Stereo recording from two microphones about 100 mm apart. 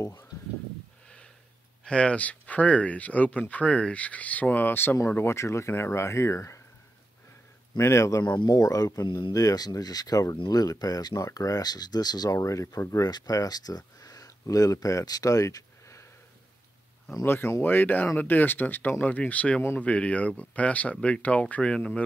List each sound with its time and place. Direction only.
0.0 s speech: 30° left (ahead or behind)
1.0 s a sound: 10° left (ahead or behind)
1.9 s speech: 10° left (ahead or behind); by 6.6 s 30° left (ahead or behind)
7.7 s speech: 30° left (ahead or behind)
17.2 s speech: 25° left (ahead or behind)